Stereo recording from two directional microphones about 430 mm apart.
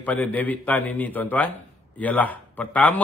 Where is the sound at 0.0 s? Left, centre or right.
Centre.